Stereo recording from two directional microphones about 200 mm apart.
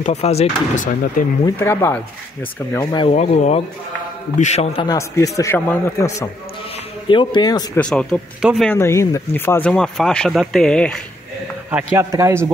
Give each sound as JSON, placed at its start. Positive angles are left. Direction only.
{"t": 0.0, "sound": "speech", "side_deg": 30}
{"t": 1.6, "sound": "a man's voice", "side_deg": 10}
{"t": 3.1, "sound": "speech", "side_deg": 35}
{"t": 4.8, "sound": "a man's voice", "side_deg": 15}
{"t": 7.8, "sound": "speech", "side_deg": 5}
{"t": 8.6, "sound": "speech", "side_deg": 15}
{"t": 11.7, "sound": "a man's voice", "side_deg": -15}